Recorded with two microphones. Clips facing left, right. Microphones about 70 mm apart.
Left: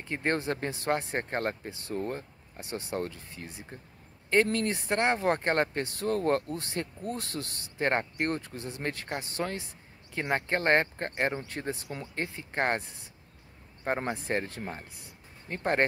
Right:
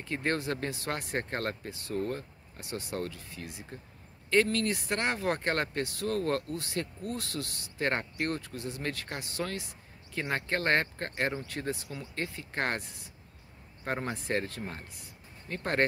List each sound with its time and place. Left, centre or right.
0.1 s speech: left
14.1 s speech: left